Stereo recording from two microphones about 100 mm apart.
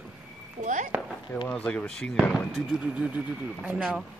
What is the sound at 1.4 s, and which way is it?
Speech, 10° left (ahead or behind).